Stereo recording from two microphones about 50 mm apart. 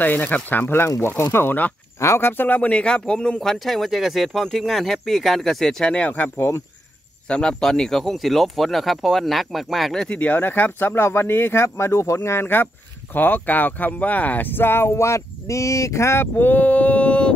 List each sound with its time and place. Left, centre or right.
0.0 s speech: left
2.4 s speech: left; by 5.9 s centre
5.9 s speech: left
7.2 s speech: centre
10.0 s speech: left
12.2 s speech: left
16.3 s speech: left